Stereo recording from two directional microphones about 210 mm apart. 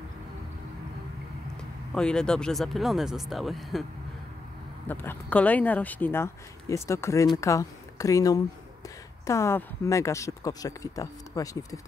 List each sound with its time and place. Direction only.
2.0 s speech: 5° left (ahead or behind)
4.8 s speech: 10° left (ahead or behind)